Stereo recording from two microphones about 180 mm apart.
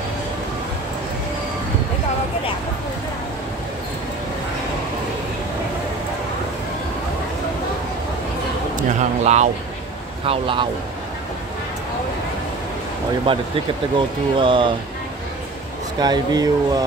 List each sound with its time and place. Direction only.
8.7 s a sound: 40° right (ahead or behind)
10.2 s speech: 30° right (ahead or behind)
13.3 s speech: 30° right (ahead or behind)
16.0 s speech: 25° right (ahead or behind)